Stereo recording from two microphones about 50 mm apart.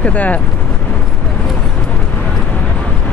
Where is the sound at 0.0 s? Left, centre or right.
Left.